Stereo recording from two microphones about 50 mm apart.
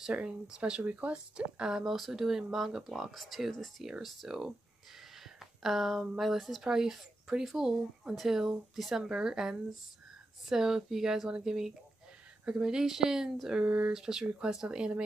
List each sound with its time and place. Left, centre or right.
0.1 s speech: right
13.7 s speech: right
13.9 s speech: centre